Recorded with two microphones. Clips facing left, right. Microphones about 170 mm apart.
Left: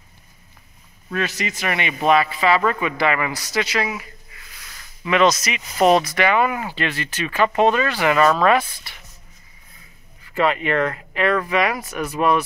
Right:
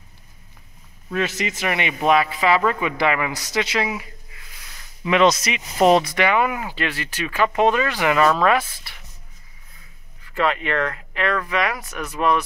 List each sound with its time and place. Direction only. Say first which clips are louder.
1.1 s a man's voice: right 1 dB; 20° right (ahead or behind)
5.8 s speech: even; 5° left (ahead or behind)
6.0 s a man's voice: left 1 dB; 15° right (ahead or behind)
10.3 s speech: left 2 dB; 10° left (ahead or behind)